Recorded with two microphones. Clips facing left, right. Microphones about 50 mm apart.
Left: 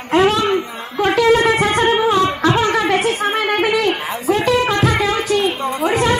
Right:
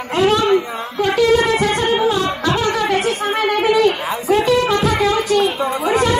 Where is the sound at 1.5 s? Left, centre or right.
Left.